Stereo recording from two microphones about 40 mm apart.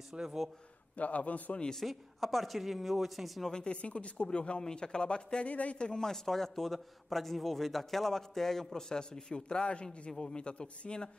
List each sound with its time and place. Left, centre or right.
0.1 s speech: centre
0.9 s a man's voice: left
1.8 s speech: centre
3.6 s speech: left
5.5 s a man's voice: left
5.8 s speech: left
6.0 s a man's voice: centre